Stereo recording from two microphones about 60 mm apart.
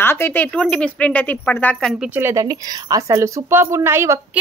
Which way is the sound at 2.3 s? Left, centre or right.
Right.